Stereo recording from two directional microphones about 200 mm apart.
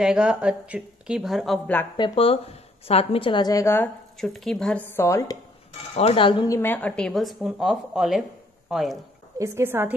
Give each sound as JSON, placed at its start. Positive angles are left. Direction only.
{"t": 0.0, "sound": "speech", "side_deg": -5}
{"t": 2.0, "sound": "a woman's voice", "side_deg": 25}
{"t": 5.7, "sound": "speech", "side_deg": 30}
{"t": 9.4, "sound": "a woman's voice", "side_deg": -10}